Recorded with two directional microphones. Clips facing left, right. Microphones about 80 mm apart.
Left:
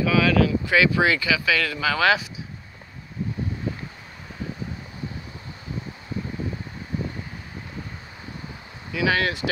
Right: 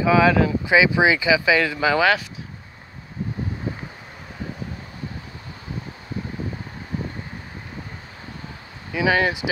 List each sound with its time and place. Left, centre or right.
0.0 s speech: right
2.0 s speech: centre
8.9 s speech: right